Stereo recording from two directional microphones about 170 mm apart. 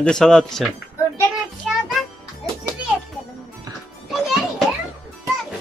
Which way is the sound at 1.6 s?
Centre (ahead or behind).